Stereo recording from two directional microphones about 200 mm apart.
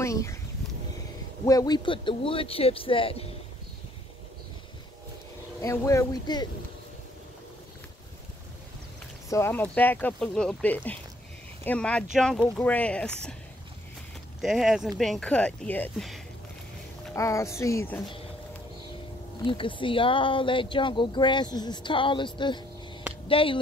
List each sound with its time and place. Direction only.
0.0 s a sound: 15° left (ahead or behind)
1.4 s speech: 15° left (ahead or behind)
5.6 s speech: 15° left (ahead or behind)
9.3 s speech: 10° left (ahead or behind)
14.4 s speech: centre (ahead or behind)
19.4 s speech: 25° left (ahead or behind)